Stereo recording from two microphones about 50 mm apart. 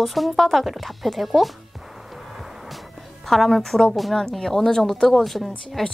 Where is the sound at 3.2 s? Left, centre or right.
Centre.